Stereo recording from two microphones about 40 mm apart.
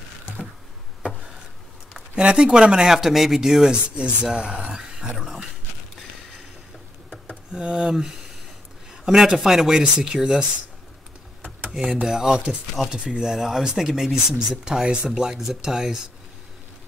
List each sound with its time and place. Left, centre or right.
2.1 s speech: right
3.0 s speech: centre
3.6 s speech: right
4.7 s a sound: centre
5.1 s speech: centre
7.5 s a man's voice: centre
11.7 s speech: centre
12.9 s speech: right
13.2 s speech: centre